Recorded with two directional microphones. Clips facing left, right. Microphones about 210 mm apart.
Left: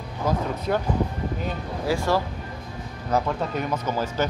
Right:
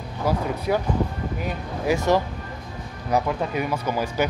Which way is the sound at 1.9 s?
20° right (ahead or behind).